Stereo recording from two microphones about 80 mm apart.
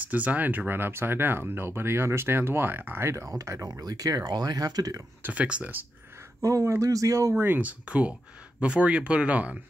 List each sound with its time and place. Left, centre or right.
0.0 s speech: centre
3.3 s speech: right
3.8 s speech: right
5.2 s speech: centre
6.4 s speech: right
7.3 s speech: right